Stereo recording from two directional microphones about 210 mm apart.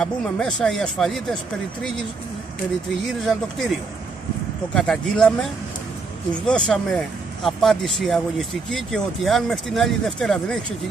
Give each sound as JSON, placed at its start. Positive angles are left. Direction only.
{"t": 0.0, "sound": "speech", "side_deg": 5}
{"t": 3.3, "sound": "speech", "side_deg": 0}
{"t": 4.7, "sound": "speech", "side_deg": 0}